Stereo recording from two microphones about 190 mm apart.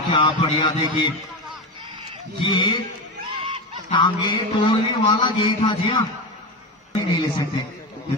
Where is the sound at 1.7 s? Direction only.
30° right (ahead or behind).